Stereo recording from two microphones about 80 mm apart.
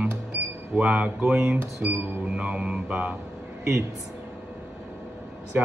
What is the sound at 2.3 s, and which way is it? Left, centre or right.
Speech, centre.